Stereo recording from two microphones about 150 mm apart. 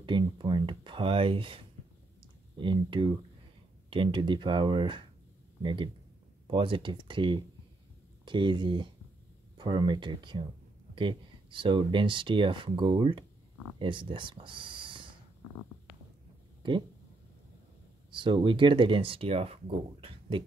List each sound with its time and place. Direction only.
0.0 s speech: 35° right (ahead or behind)
2.6 s speech: 30° right (ahead or behind)
18.1 s speech: 30° right (ahead or behind)